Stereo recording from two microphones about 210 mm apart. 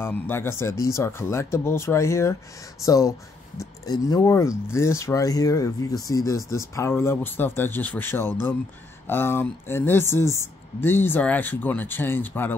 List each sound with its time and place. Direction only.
0.0 s speech: 10° left (ahead or behind)